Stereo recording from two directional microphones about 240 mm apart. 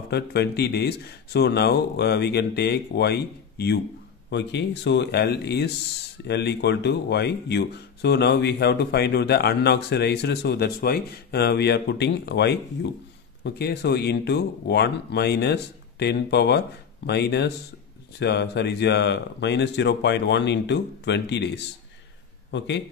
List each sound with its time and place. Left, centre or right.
0.1 s speech: left